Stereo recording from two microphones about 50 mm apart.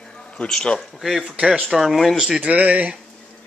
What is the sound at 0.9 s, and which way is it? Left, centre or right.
Speech, centre.